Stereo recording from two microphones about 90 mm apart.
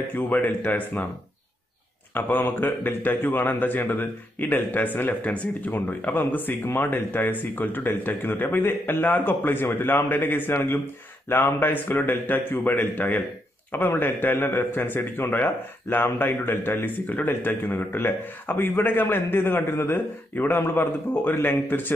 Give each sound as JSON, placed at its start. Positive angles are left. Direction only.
{"t": 0.1, "sound": "a man's voice", "side_deg": 20}
{"t": 2.1, "sound": "a man's voice", "side_deg": 25}